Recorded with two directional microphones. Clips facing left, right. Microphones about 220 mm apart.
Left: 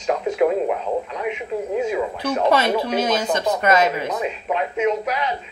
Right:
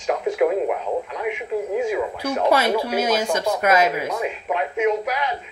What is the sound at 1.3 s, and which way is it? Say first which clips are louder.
Speech: right 1 dB; 15° right (ahead or behind).